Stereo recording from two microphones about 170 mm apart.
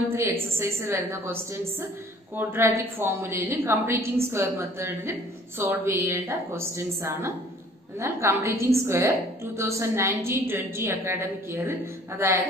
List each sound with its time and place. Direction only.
0.1 s a woman's voice: 15° right (ahead or behind)